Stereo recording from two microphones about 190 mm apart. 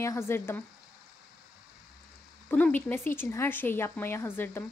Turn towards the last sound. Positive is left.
turn(degrees=10)  # may be behind; listen again after turning